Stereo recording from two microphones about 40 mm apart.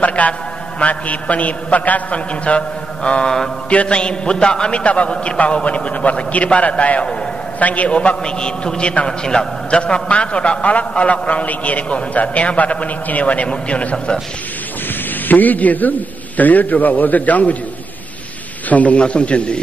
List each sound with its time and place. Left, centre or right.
0.0 s a sound: left
0.7 s a man's voice: left
15.2 s a man's voice: left
18.7 s a man's voice: left
18.9 s a man's voice: left